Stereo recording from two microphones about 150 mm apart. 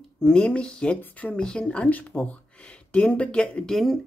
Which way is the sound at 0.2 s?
5° left (ahead or behind).